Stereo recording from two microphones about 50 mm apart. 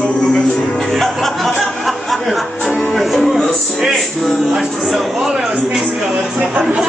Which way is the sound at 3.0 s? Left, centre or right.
Centre.